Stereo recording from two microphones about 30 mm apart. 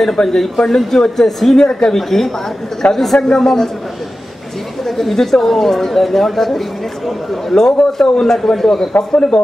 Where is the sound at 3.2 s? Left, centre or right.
Centre.